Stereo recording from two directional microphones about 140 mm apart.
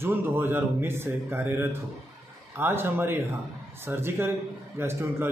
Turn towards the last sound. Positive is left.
turn(degrees=-15)  # may be behind; listen again after turning